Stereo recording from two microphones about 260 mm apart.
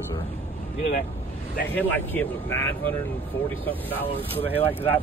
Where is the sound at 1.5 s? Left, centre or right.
Left.